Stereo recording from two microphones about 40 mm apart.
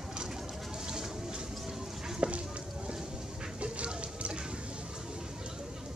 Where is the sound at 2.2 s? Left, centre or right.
Right.